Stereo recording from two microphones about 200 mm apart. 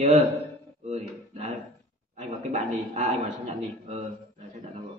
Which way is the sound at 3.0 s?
35° right (ahead or behind).